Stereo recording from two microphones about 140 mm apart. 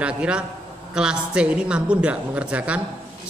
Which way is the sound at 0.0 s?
5° right (ahead or behind).